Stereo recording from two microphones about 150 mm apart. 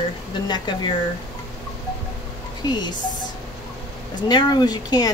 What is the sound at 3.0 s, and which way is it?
Speech, 60° left (ahead or behind).